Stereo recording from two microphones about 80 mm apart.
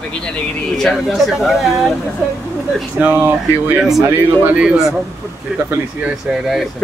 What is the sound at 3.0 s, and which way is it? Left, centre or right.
Speech, right.